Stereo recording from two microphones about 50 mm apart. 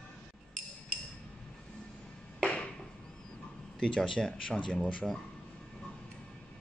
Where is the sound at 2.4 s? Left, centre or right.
Left.